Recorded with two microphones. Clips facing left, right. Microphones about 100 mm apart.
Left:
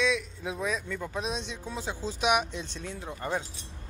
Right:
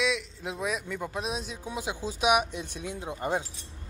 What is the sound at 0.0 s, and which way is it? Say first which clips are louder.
A man's voice: left 1 dB; 5° right (ahead or behind).